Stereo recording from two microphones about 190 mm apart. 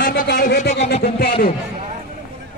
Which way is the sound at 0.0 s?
50° left (ahead or behind).